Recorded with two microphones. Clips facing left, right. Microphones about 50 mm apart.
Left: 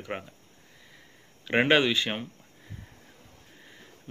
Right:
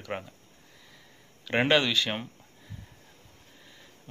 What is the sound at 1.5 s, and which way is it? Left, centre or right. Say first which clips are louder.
Speech: left 2 dB; left.